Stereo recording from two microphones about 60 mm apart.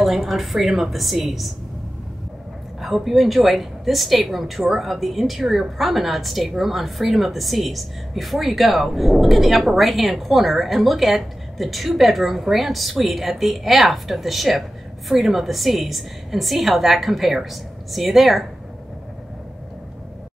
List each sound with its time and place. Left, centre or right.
0.0 s a woman's voice: centre
2.8 s a woman's voice: centre